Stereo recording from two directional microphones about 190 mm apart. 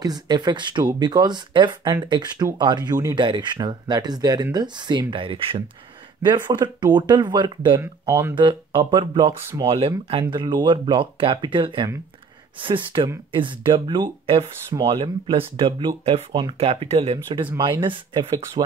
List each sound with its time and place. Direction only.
0.0 s speech: 20° right (ahead or behind)
9.3 s speech: 15° right (ahead or behind)
9.7 s speech: 30° right (ahead or behind)